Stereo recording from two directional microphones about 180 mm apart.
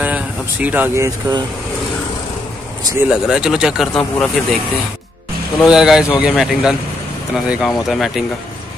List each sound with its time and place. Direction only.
0.0 s speech: 10° right (ahead or behind)
2.8 s speech: 20° right (ahead or behind)
3.1 s speech: 5° right (ahead or behind)
5.6 s speech: 5° right (ahead or behind)